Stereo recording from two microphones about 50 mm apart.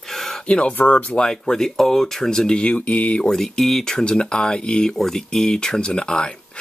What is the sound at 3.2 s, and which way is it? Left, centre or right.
Speech, centre.